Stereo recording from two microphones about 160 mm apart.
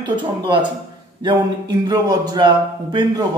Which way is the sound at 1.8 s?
25° right (ahead or behind).